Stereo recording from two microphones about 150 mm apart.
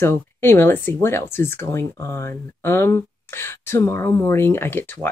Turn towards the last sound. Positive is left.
turn(degrees=15)  # may be behind; listen again after turning